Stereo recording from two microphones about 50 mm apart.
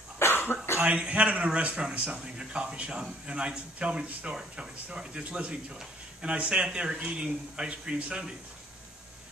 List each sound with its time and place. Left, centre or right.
0.2 s cough: left
0.7 s a man's voice: right